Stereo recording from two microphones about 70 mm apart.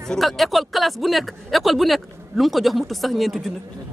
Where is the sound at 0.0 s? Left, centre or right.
Centre.